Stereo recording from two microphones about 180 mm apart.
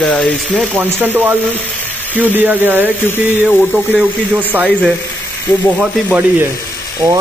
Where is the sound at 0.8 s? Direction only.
10° right (ahead or behind).